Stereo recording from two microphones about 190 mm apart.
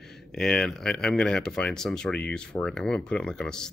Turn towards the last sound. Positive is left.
turn(degrees=5)  # may be behind; listen again after turning